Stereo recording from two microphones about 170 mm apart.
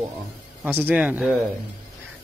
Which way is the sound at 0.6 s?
10° right (ahead or behind).